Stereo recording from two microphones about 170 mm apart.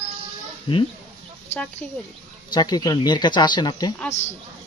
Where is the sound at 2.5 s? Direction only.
25° left (ahead or behind).